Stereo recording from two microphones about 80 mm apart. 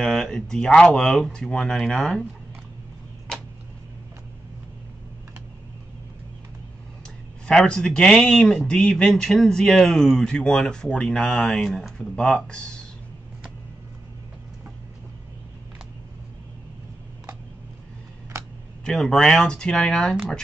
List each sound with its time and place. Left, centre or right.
0.0 s speech: centre
7.4 s speech: centre
18.3 s a sound: right
18.9 s speech: centre